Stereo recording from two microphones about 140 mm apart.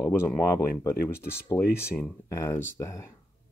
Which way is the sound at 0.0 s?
20° left (ahead or behind).